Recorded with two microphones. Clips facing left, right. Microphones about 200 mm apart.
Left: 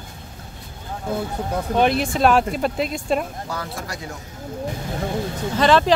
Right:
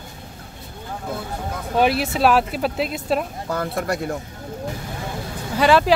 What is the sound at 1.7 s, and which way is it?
Speech, 5° right (ahead or behind).